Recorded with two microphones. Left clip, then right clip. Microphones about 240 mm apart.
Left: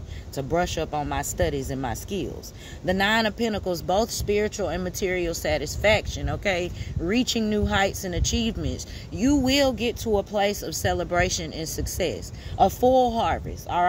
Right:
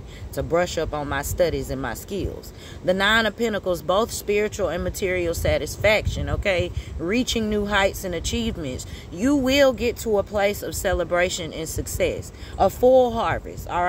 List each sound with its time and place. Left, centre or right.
0.4 s speech: left